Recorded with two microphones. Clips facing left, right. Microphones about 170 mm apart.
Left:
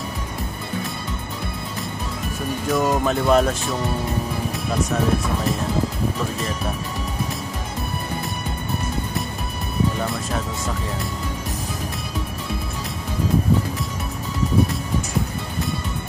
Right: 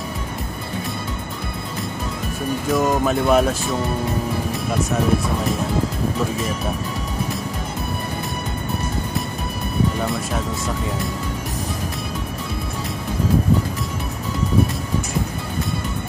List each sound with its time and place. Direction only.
2.7 s speech: centre (ahead or behind)
10.0 s speech: centre (ahead or behind)